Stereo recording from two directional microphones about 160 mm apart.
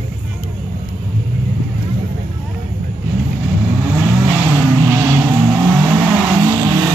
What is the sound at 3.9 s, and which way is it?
Vehicle, 15° right (ahead or behind).